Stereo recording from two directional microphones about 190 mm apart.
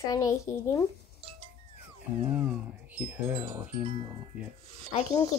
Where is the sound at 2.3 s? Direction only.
10° right (ahead or behind).